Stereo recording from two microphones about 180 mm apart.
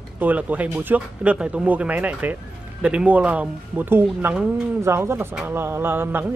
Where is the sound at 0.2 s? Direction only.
10° right (ahead or behind).